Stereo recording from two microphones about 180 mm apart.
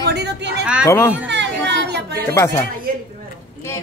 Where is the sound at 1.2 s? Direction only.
75° right (ahead or behind).